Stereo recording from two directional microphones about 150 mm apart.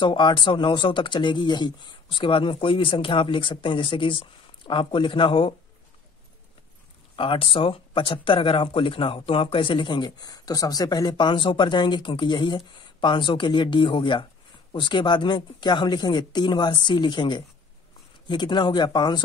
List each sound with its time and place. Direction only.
0.0 s speech: 30° left (ahead or behind)
7.2 s speech: 35° left (ahead or behind)